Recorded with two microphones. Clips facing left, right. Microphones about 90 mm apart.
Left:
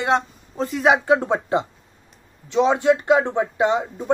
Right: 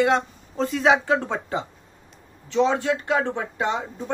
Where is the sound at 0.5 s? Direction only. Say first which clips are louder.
Left 1 dB; 5° left (ahead or behind).